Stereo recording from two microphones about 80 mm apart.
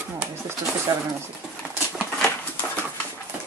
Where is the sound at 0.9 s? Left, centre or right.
Right.